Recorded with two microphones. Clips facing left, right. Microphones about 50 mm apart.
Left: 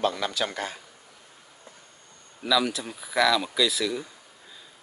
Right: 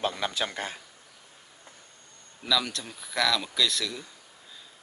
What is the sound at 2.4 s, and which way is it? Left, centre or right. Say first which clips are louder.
Speech: left 4 dB; centre.